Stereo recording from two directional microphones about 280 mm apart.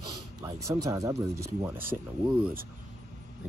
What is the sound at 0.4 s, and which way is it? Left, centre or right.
Speech, centre.